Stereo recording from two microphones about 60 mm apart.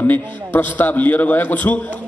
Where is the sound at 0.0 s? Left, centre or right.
Left.